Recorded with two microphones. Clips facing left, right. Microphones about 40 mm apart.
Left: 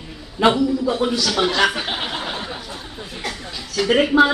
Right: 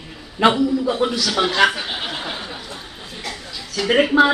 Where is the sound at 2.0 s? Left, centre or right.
Centre.